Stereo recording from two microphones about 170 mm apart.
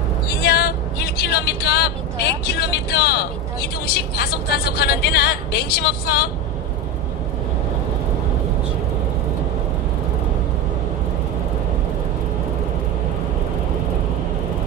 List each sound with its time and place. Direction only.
0.4 s vehicle: 75° left (ahead or behind)
2.4 s a woman's voice: 70° left (ahead or behind)